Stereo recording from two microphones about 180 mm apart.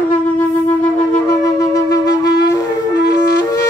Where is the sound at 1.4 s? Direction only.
20° left (ahead or behind).